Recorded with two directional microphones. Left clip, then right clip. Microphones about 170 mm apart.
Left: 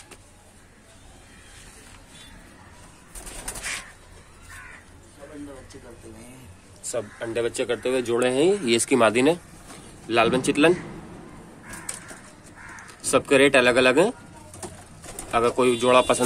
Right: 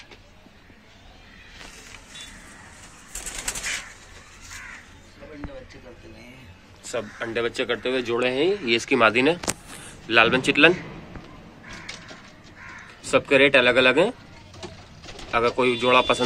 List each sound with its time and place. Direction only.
6.8 s speech: 5° left (ahead or behind)
8.0 s speech: 25° left (ahead or behind); by 10.8 s 5° left (ahead or behind)
13.1 s speech: 10° left (ahead or behind)
15.3 s speech: 10° left (ahead or behind)